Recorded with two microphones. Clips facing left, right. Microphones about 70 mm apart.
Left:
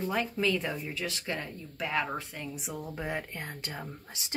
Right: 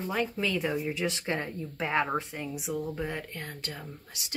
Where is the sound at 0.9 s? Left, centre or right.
Right.